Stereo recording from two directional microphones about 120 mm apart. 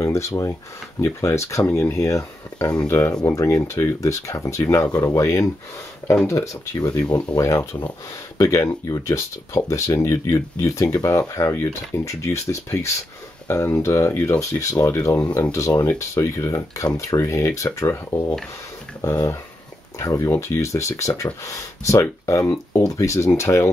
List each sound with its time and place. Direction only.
0.0 s speech: 25° left (ahead or behind)
7.3 s speech: 25° left (ahead or behind)